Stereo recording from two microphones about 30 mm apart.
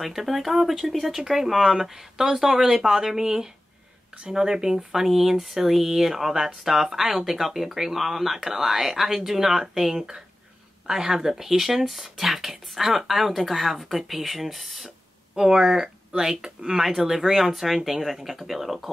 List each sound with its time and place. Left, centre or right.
0.0 s speech: centre; by 4.7 s right
4.9 s speech: centre
10.9 s speech: right; by 14.9 s centre
15.3 s speech: right
17.2 s speech: centre